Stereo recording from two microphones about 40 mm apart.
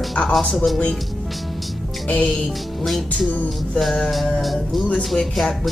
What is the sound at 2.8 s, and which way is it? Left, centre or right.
Speech, centre.